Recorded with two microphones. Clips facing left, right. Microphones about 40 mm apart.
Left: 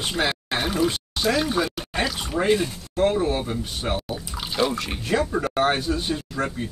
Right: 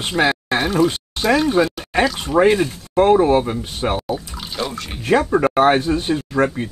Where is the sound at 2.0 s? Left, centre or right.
Centre.